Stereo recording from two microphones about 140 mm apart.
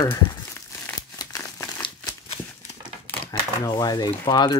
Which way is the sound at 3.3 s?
25° left (ahead or behind).